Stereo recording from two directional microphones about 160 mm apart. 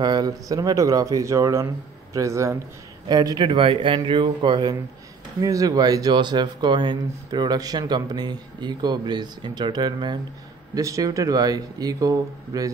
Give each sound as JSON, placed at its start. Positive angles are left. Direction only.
{"t": 0.0, "sound": "speech", "side_deg": -25}